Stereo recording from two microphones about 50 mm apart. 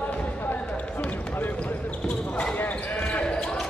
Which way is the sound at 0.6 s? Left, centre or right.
Left.